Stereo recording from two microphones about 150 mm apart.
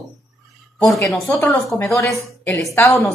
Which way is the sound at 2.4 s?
15° left (ahead or behind).